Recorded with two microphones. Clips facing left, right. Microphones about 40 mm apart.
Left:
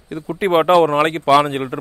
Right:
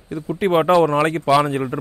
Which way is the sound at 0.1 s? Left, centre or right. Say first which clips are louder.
Left 1 dB; left.